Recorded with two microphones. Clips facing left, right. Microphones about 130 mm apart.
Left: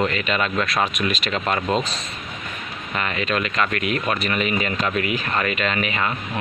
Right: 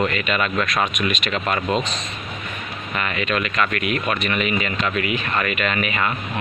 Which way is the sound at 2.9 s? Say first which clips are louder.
Even; 30° left (ahead or behind).